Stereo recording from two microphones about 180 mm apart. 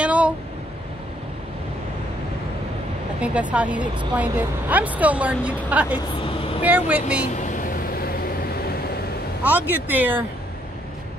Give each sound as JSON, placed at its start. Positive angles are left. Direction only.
{"t": 0.0, "sound": "a sound", "side_deg": -5}
{"t": 3.2, "sound": "a woman's voice", "side_deg": -5}
{"t": 7.3, "sound": "vehicle", "side_deg": 45}
{"t": 9.4, "sound": "a woman's voice", "side_deg": -10}